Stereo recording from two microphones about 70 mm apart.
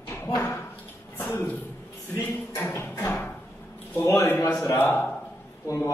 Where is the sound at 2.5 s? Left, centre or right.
Left.